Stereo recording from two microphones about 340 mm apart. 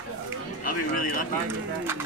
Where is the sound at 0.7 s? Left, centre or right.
Left.